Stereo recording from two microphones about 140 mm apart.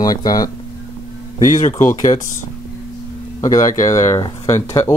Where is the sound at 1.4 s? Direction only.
60° left (ahead or behind).